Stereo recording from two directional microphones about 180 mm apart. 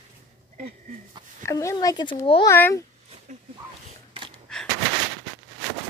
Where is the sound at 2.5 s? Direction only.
15° left (ahead or behind).